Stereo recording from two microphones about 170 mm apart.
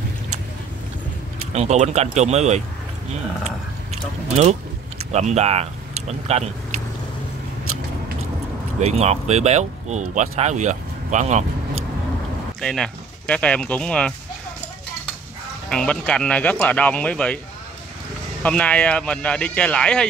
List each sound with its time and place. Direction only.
1.5 s speech: 40° right (ahead or behind)
8.8 s speech: 40° right (ahead or behind)
12.5 s speech: 5° left (ahead or behind)
15.7 s speech: 5° left (ahead or behind)
18.4 s speech: 5° left (ahead or behind)